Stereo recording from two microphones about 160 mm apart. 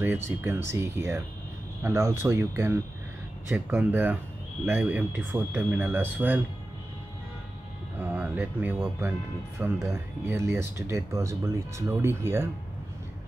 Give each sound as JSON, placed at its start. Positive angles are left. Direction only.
{"t": 0.4, "sound": "speech", "side_deg": -15}
{"t": 3.5, "sound": "speech", "side_deg": -5}
{"t": 8.0, "sound": "speech", "side_deg": -10}
{"t": 10.2, "sound": "speech", "side_deg": -15}